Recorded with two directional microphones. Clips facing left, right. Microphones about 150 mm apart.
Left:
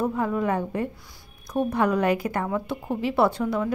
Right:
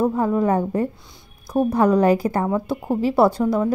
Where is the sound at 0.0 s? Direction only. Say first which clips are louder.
Right 5 dB; 30° right (ahead or behind).